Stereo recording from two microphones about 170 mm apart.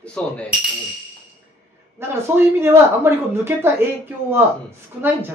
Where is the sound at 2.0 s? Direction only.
15° right (ahead or behind).